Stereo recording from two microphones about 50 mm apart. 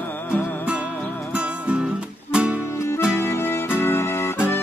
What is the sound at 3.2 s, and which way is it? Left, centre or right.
Music, left.